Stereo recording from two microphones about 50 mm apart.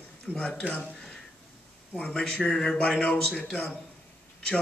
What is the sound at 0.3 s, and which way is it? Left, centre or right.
Speech, centre.